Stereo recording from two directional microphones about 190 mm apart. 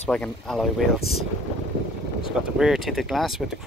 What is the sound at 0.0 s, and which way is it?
Speech, 5° left (ahead or behind).